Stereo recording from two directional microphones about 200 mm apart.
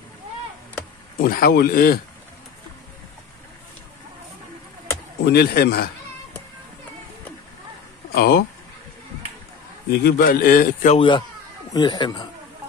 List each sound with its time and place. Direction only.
1.2 s a man's voice: 45° left (ahead or behind)
5.2 s a man's voice: 50° left (ahead or behind)
8.1 s speech: 50° left (ahead or behind)
9.8 s a man's voice: 50° left (ahead or behind)
11.0 s speech: 25° left (ahead or behind)